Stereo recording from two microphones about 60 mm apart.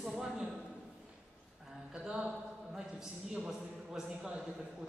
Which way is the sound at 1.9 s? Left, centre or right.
Centre.